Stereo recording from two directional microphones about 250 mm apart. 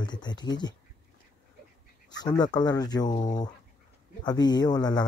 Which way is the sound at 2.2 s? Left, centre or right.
Centre.